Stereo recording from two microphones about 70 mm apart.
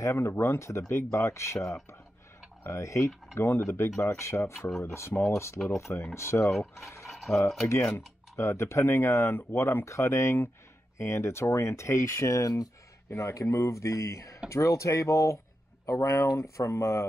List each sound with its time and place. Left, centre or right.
0.0 s speech: left
4.6 s speech: centre
4.8 s speech: left
6.5 s speech: centre
7.1 s stir: centre
7.6 s speech: left